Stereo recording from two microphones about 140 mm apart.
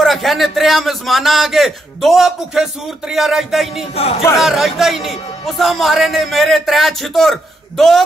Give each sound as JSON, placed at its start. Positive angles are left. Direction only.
{"t": 0.0, "sound": "a man's voice", "side_deg": 0}
{"t": 3.9, "sound": "music", "side_deg": 45}
{"t": 4.4, "sound": "a man's voice", "side_deg": 0}